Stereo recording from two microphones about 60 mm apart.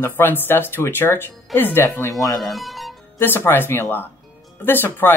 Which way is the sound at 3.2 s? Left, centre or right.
Left.